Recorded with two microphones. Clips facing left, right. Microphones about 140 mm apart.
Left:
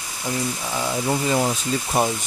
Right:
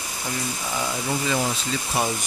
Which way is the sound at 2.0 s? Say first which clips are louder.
Left 4 dB; 45° left (ahead or behind).